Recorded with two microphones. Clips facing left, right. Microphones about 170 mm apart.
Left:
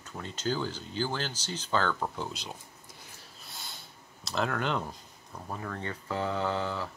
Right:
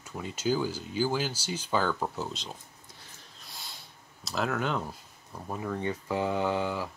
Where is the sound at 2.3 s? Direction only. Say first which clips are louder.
Right 1 dB; 10° left (ahead or behind).